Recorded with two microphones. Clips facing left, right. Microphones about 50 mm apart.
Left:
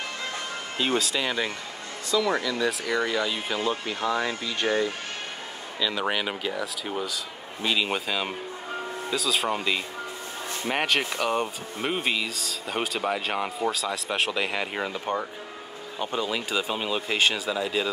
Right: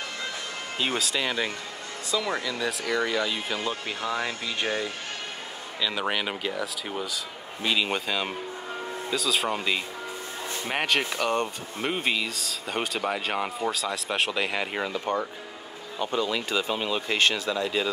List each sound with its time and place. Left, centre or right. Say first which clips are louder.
0.7 s speech: left 2 dB; centre
5.8 s speech: left 1 dB; centre
15.1 s speech: right 1 dB; centre